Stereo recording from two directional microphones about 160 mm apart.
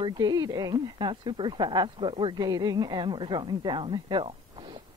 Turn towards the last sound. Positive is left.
turn(degrees=-30)  # may be behind; listen again after turning